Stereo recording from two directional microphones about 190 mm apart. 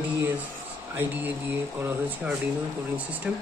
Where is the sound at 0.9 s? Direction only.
10° right (ahead or behind).